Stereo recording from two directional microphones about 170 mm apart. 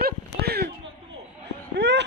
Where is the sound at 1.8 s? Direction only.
90° right.